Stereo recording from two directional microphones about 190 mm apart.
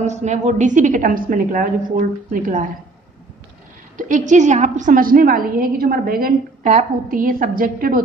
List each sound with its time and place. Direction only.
0.0 s a woman's voice: 35° right (ahead or behind)
3.9 s a woman's voice: 40° right (ahead or behind)